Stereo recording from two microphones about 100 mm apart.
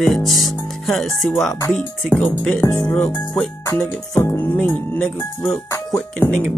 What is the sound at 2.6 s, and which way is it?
Speech, 20° left (ahead or behind).